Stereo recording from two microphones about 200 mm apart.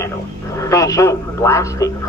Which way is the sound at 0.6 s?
15° left (ahead or behind).